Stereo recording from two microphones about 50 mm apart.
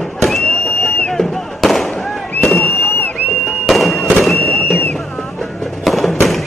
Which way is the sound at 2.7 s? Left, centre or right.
Left.